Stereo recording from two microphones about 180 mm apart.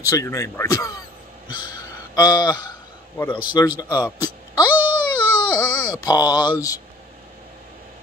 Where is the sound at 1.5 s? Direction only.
25° left (ahead or behind).